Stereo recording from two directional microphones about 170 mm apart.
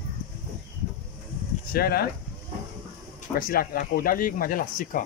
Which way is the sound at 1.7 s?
65° left (ahead or behind).